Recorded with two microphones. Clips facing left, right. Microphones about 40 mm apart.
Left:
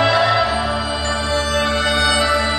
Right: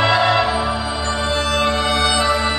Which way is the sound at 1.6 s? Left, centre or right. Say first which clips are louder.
Even; right.